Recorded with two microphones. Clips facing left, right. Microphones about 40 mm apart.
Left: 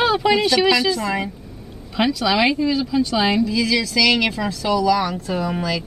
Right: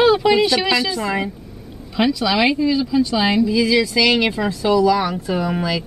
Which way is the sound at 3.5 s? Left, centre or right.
Centre.